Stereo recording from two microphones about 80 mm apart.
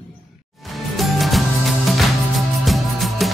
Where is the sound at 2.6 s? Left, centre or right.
Centre.